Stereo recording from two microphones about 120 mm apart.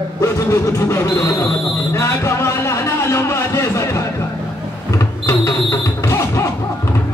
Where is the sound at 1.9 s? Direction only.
25° left (ahead or behind).